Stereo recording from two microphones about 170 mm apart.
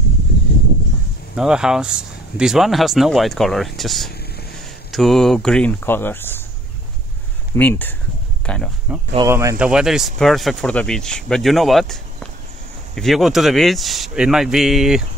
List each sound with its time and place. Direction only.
1.3 s speech: 5° right (ahead or behind); by 6.4 s 10° left (ahead or behind)
7.5 s speech: 10° left (ahead or behind)
8.9 s speech: 5° right (ahead or behind)
9.3 s speech: 20° right (ahead or behind)
9.6 s speech: 5° right (ahead or behind)